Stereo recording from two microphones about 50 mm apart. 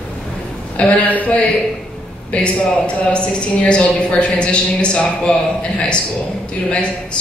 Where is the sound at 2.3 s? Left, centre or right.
Left.